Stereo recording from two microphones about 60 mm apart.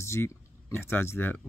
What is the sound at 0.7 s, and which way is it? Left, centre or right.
Speech, left.